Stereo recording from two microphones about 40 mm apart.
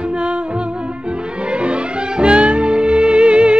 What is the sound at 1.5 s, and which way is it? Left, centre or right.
Music, right.